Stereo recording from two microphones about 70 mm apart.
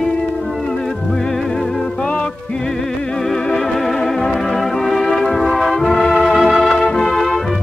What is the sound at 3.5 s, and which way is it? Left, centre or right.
Music, centre.